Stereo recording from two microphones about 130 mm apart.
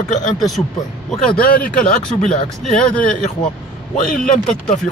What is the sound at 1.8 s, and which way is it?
Speech, 5° left (ahead or behind).